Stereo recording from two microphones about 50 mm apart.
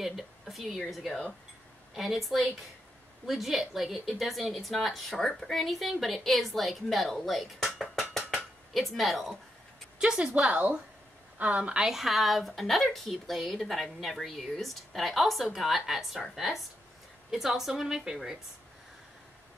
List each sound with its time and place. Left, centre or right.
0.0 s a woman's voice: centre
9.9 s a woman's voice: centre
11.8 s a woman's voice: centre